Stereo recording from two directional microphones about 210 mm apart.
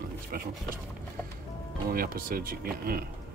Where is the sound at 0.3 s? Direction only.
45° right (ahead or behind).